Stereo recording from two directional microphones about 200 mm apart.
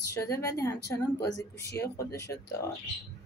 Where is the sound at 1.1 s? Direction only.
55° left (ahead or behind).